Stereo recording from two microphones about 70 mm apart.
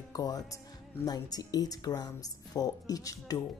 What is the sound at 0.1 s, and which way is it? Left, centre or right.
A woman's voice, left.